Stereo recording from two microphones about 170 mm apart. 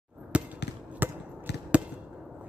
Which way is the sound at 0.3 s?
5° right (ahead or behind).